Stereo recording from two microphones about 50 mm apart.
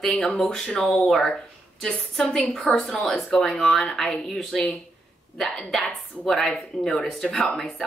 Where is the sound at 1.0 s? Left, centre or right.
Centre.